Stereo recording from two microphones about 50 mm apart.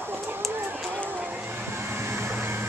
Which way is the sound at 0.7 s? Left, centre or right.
Right.